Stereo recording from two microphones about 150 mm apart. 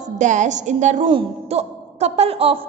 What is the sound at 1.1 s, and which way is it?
Speech, 40° right (ahead or behind).